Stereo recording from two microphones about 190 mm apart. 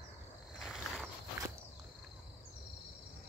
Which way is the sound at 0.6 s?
Centre (ahead or behind).